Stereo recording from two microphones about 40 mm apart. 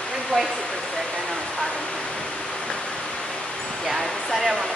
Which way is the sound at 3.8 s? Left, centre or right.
Centre.